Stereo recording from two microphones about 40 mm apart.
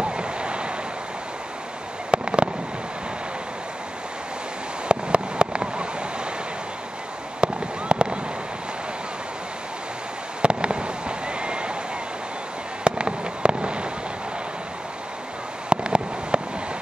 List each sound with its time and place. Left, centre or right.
0.0 s a sound: right
2.0 s fireworks: right
4.8 s a sound: right
7.3 s fireworks: right
10.4 s fireworks: right
12.8 s fireworks: right
15.7 s fireworks: right